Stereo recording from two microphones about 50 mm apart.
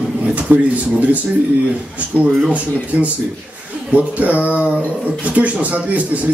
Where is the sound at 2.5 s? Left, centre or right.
Right.